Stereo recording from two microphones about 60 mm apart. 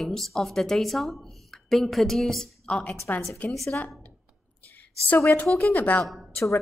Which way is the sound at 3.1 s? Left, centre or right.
Left.